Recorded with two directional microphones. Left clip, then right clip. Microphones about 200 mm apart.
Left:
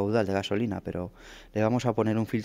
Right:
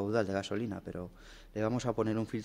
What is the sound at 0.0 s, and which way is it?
Speech, 40° left (ahead or behind).